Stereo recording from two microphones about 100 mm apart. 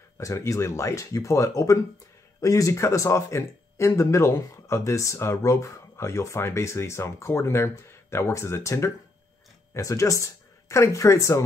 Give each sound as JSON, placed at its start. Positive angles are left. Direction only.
{"t": 0.2, "sound": "speech", "side_deg": 30}